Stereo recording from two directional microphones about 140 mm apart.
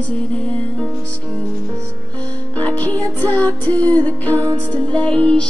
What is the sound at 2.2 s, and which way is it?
Music, 10° left (ahead or behind).